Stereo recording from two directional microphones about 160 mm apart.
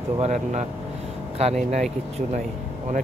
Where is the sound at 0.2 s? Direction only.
45° right (ahead or behind).